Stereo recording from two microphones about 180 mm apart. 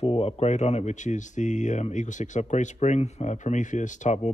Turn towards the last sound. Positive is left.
turn(degrees=40)  # may be behind; listen again after turning